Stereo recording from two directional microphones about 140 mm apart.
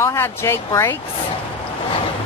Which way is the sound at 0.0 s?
20° left (ahead or behind).